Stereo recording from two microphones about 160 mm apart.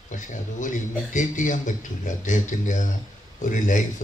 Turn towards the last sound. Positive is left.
turn(degrees=55)  # may be behind; listen again after turning